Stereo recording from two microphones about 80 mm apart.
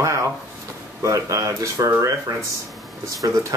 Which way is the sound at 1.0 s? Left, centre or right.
Right.